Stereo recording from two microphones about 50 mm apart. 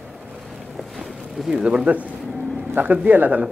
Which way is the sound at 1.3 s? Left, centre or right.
Centre.